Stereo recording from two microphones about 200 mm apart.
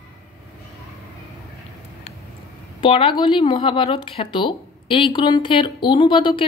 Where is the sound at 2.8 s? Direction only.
25° left (ahead or behind).